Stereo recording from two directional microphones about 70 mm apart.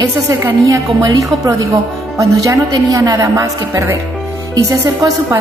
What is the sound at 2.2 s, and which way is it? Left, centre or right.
A woman's voice, right.